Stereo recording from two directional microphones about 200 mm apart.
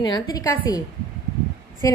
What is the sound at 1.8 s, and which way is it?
Speech, 15° left (ahead or behind).